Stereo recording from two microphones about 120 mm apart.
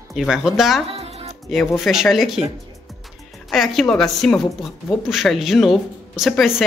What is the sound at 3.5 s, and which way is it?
A woman's voice, centre (ahead or behind).